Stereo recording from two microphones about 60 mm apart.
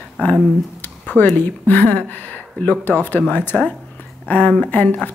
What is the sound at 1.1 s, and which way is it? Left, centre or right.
Speech, left.